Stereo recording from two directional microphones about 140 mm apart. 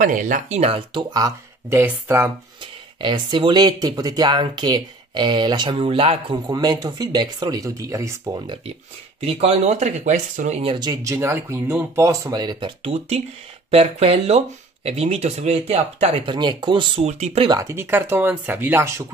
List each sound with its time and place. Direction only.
0.0 s speech: 70° right (ahead or behind); by 1.8 s 25° right (ahead or behind)
1.8 s speech: 15° right (ahead or behind)
3.0 s speech: 35° right (ahead or behind)
9.2 s speech: 45° right (ahead or behind); by 10.6 s 60° right (ahead or behind)
10.6 s speech: 35° right (ahead or behind)
11.1 s speech: 20° right (ahead or behind); by 12.9 s 35° right (ahead or behind)
13.7 s speech: 45° right (ahead or behind)
17.0 s speech: 50° right (ahead or behind)
17.5 s speech: 20° right (ahead or behind)